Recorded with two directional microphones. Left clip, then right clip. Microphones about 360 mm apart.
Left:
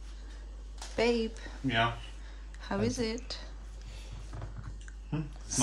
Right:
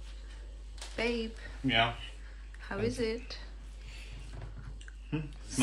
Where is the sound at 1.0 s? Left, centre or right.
Centre.